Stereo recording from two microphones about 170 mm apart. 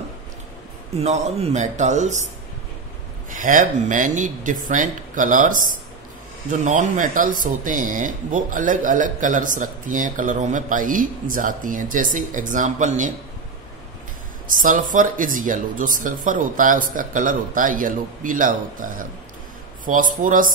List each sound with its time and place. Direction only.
0.9 s speech: 40° right (ahead or behind)
3.3 s speech: 50° right (ahead or behind)
14.5 s speech: 55° right (ahead or behind)